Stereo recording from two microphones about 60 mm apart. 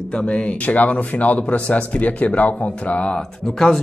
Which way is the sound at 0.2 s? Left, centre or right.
Left.